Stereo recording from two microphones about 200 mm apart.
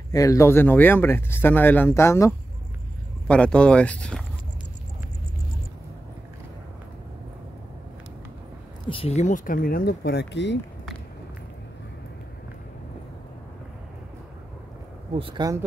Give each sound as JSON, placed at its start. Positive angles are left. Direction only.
{"t": 0.1, "sound": "speech", "side_deg": 15}
{"t": 8.8, "sound": "speech", "side_deg": 30}
{"t": 15.1, "sound": "speech", "side_deg": -25}